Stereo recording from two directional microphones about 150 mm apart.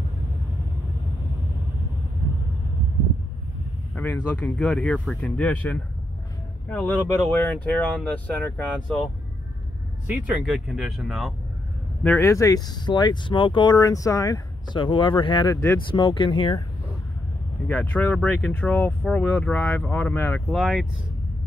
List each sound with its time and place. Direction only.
3.9 s speech: 10° left (ahead or behind)
10.0 s speech: 10° right (ahead or behind)
12.0 s speech: 15° left (ahead or behind); by 15.5 s 30° left (ahead or behind)
15.5 s speech: 15° left (ahead or behind)
15.9 s speech: 35° left (ahead or behind)
17.6 s speech: 10° left (ahead or behind)